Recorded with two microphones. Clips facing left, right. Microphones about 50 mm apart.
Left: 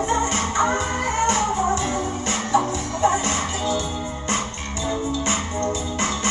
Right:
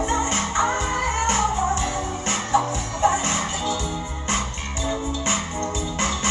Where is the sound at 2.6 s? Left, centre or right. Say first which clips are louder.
Left 1 dB; left.